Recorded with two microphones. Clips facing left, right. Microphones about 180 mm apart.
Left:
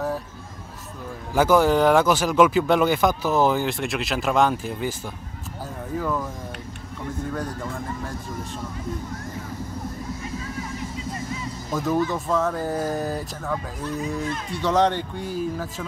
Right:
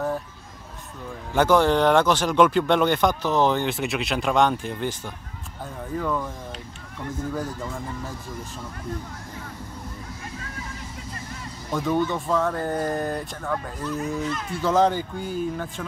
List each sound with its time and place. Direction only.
1.3 s speech: 5° left (ahead or behind)
5.9 s speech: centre (ahead or behind)
11.7 s speech: centre (ahead or behind)